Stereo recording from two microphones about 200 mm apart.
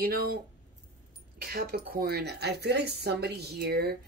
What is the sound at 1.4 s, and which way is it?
Speech, 50° right (ahead or behind).